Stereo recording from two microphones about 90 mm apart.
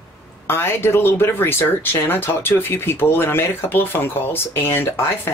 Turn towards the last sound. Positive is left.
turn(degrees=25)  # may be behind; listen again after turning